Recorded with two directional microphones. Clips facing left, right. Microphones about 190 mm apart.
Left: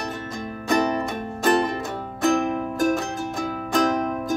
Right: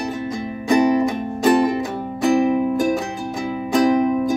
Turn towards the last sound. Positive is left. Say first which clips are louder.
# right 6 dB
turn(degrees=-5)  # may be behind; listen again after turning